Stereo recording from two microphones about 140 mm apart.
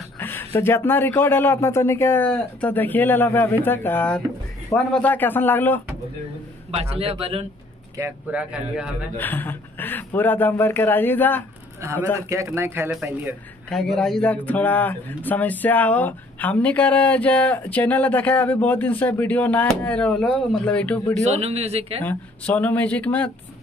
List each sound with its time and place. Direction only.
0.2 s speech: 15° left (ahead or behind)
6.8 s a man's voice: 45° right (ahead or behind)
8.0 s speech: 10° right (ahead or behind)
9.1 s speech: 15° left (ahead or behind)
11.8 s a man's voice: 20° right (ahead or behind)
13.7 s speech: 5° left (ahead or behind)
21.2 s a man's voice: 50° right (ahead or behind)
22.0 s speech: 10° left (ahead or behind)